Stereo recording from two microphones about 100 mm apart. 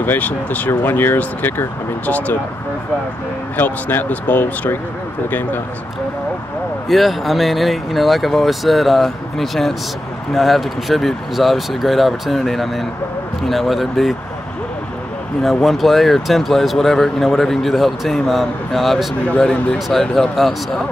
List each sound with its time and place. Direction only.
0.0 s speech: 20° left (ahead or behind)
3.5 s speech: 20° left (ahead or behind)
6.9 s speech: centre (ahead or behind)
15.4 s speech: centre (ahead or behind)